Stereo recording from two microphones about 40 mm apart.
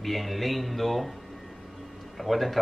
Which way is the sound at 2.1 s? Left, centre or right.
Centre.